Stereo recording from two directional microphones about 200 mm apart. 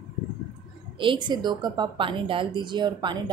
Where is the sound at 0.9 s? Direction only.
25° right (ahead or behind).